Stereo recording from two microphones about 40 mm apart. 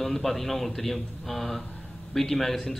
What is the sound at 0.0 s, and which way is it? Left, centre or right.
A man's voice, centre.